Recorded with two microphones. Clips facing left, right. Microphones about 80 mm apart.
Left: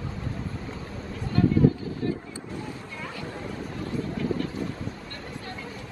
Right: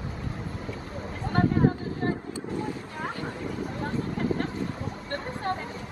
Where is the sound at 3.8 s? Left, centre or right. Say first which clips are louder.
Even; right.